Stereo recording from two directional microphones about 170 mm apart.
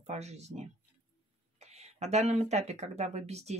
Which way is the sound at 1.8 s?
40° right (ahead or behind).